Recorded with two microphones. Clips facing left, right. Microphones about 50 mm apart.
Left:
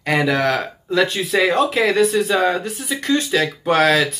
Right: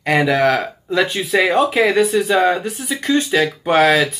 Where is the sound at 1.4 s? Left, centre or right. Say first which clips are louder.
Right 2 dB; centre.